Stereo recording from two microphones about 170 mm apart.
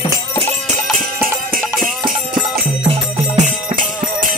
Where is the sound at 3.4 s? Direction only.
50° right (ahead or behind).